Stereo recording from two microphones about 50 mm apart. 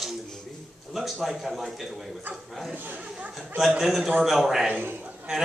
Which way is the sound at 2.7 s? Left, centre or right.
Right.